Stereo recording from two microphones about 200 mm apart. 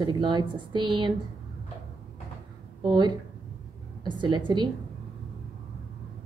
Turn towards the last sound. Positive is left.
turn(degrees=-20)  # may be behind; listen again after turning